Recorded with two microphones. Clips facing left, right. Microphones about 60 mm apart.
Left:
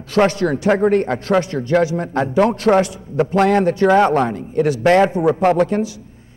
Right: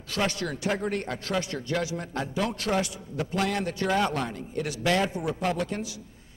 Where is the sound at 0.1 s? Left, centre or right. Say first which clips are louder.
Left 13 dB; left.